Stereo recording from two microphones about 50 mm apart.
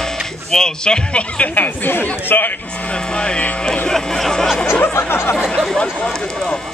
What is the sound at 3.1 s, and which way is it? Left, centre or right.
Speech, centre.